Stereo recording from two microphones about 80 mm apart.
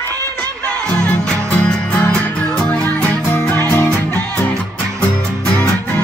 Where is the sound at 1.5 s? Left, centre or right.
Left.